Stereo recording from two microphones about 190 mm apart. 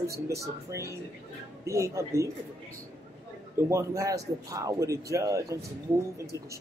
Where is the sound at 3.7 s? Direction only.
15° right (ahead or behind).